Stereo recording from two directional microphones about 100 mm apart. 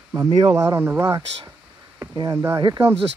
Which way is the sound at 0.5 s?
30° right (ahead or behind).